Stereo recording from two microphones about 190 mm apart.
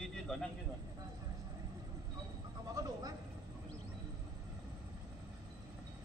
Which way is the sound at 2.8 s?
20° right (ahead or behind).